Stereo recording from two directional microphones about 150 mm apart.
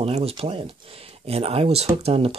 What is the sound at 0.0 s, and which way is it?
Speech, 40° right (ahead or behind).